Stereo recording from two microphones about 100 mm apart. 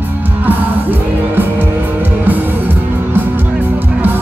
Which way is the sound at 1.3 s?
20° right (ahead or behind).